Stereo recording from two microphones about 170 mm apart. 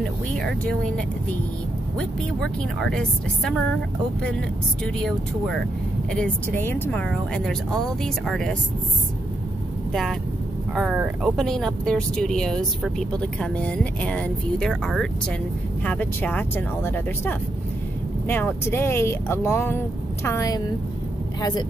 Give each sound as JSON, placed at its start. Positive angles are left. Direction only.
{"t": 0.4, "sound": "speech", "side_deg": 5}
{"t": 4.8, "sound": "speech", "side_deg": 5}
{"t": 10.7, "sound": "a woman's voice", "side_deg": -5}